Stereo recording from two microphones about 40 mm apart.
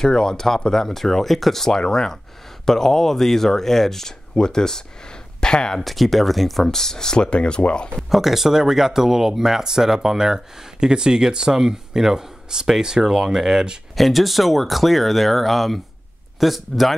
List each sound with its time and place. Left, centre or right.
0.0 s speech: centre
5.8 s speech: centre; by 7.9 s left
8.1 s speech: centre
13.9 s speech: centre